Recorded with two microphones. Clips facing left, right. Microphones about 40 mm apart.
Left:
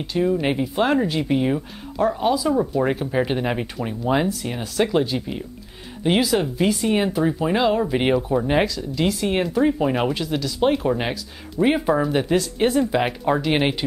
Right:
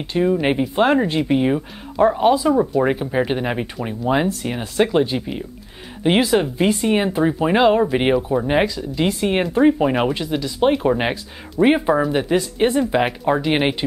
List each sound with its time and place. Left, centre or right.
0.0 s speech: right
2.8 s speech: centre
4.4 s speech: right
7.9 s speech: centre
12.0 s speech: centre